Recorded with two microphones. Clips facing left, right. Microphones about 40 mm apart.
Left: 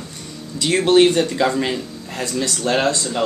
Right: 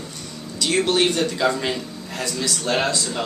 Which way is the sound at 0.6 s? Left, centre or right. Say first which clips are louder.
Left 6 dB; left.